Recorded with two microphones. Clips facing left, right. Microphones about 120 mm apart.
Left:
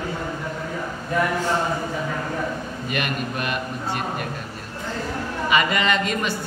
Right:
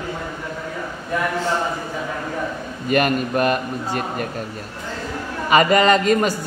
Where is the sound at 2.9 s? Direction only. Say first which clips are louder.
Right 9 dB; 40° right (ahead or behind).